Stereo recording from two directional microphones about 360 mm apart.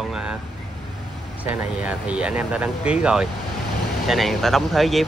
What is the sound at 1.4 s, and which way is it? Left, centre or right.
Speech, centre.